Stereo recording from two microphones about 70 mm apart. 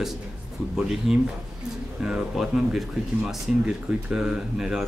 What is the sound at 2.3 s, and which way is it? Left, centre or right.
Speech, centre.